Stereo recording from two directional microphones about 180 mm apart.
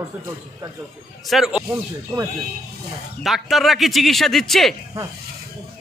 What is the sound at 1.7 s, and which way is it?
Speech, 20° right (ahead or behind).